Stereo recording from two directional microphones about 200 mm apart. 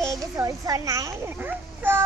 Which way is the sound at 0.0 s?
15° right (ahead or behind).